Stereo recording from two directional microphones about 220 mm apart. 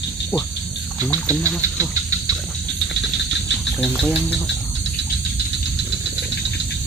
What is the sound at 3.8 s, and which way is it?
Insect, centre (ahead or behind).